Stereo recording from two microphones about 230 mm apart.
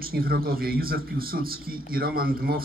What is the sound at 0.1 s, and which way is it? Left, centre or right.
A man's voice, right.